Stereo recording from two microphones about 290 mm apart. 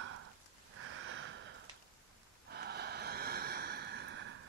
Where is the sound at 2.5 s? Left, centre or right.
Right.